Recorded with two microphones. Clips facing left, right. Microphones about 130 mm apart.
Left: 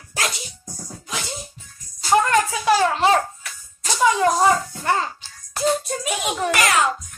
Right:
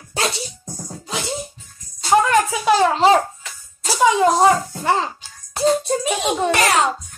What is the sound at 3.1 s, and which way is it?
Babbling, 20° right (ahead or behind).